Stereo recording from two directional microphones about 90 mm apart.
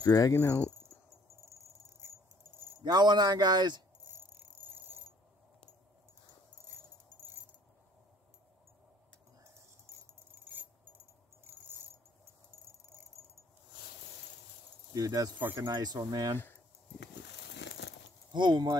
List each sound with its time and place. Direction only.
0.0 s speech: 40° left (ahead or behind)
0.4 s speech: 25° left (ahead or behind)
1.4 s a sound: 30° right (ahead or behind)
2.8 s speech: 55° right (ahead or behind)
4.1 s a sound: 25° right (ahead or behind)
9.9 s keys jangling: 30° right (ahead or behind)
11.4 s a sound: 30° right (ahead or behind)
15.0 s speech: 40° right (ahead or behind)
18.3 s speech: 55° right (ahead or behind)